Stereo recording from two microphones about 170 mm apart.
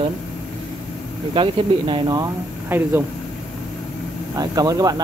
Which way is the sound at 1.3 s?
30° right (ahead or behind).